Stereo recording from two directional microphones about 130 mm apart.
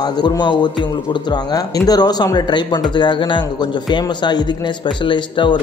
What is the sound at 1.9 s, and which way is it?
Speech, 30° left (ahead or behind).